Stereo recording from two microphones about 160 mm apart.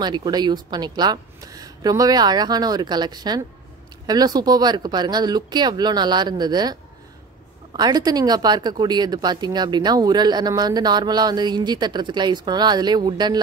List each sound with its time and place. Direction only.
0.0 s speech: 25° right (ahead or behind)